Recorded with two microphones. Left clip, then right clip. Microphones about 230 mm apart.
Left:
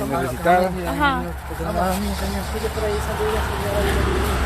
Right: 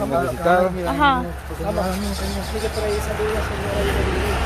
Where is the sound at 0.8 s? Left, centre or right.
Centre.